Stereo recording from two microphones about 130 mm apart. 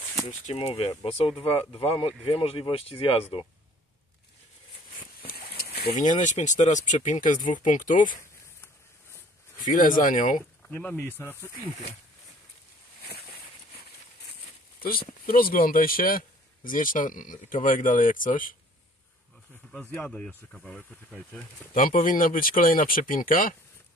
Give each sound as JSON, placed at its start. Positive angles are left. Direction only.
{"t": 0.5, "sound": "speech", "side_deg": 50}
{"t": 5.9, "sound": "speech", "side_deg": 75}
{"t": 9.7, "sound": "speech", "side_deg": 90}
{"t": 10.7, "sound": "speech", "side_deg": 15}
{"t": 15.2, "sound": "speech", "side_deg": 90}
{"t": 19.7, "sound": "speech", "side_deg": 10}
{"t": 21.7, "sound": "speech", "side_deg": 90}